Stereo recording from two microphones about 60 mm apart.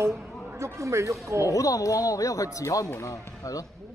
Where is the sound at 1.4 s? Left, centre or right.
Left.